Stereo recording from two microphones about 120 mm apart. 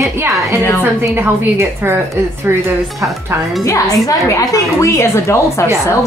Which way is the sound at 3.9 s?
25° left (ahead or behind).